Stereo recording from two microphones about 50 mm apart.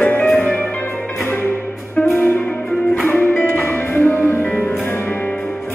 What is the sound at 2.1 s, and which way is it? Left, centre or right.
Music, left.